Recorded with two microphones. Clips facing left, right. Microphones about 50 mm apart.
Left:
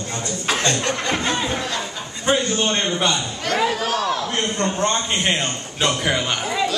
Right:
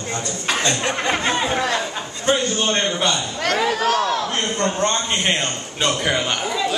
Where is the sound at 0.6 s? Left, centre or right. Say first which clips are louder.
Right 2 dB; centre.